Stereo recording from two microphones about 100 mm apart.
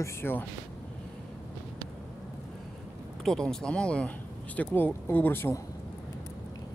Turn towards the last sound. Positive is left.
turn(degrees=20)  # may be behind; listen again after turning